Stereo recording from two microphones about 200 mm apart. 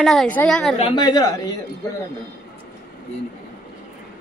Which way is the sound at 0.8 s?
20° left (ahead or behind).